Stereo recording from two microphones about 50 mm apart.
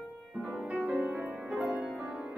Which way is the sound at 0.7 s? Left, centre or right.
Right.